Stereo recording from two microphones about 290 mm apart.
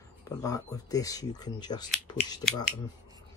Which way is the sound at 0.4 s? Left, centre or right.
Centre.